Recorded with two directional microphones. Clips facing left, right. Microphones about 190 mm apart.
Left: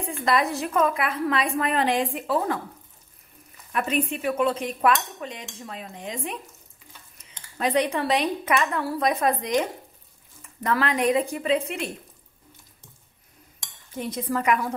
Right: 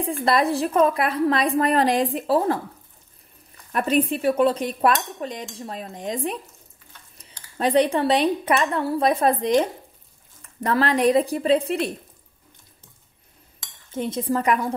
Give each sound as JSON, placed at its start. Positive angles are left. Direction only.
{"t": 0.0, "sound": "a woman's voice", "side_deg": -35}
{"t": 3.7, "sound": "a woman's voice", "side_deg": -35}
{"t": 7.5, "sound": "a woman's voice", "side_deg": -30}
{"t": 13.9, "sound": "speech", "side_deg": -25}